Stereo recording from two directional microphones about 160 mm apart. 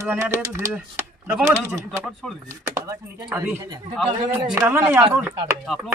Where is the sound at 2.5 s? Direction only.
20° right (ahead or behind).